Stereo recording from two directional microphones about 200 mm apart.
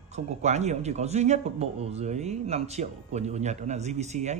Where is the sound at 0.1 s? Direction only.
35° right (ahead or behind).